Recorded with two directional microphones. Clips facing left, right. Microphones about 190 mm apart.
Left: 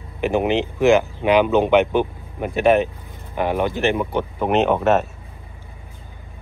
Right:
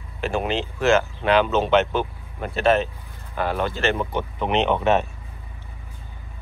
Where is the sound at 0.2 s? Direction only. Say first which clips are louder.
Left 5 dB; 15° left (ahead or behind).